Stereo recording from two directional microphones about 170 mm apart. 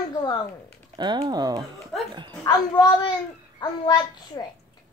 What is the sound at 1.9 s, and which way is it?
Dog, centre (ahead or behind).